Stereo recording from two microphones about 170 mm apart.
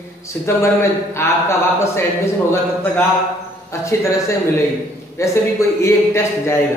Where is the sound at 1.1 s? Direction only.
15° left (ahead or behind).